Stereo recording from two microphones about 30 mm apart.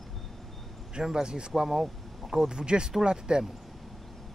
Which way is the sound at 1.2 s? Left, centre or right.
Right.